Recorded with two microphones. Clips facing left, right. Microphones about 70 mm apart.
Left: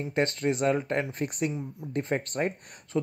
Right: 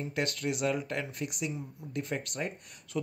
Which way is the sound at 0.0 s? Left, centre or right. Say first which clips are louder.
Left 6 dB; left.